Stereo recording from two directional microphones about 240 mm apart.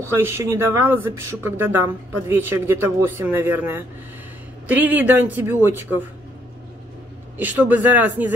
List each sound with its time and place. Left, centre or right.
0.1 s speech: centre
7.3 s speech: centre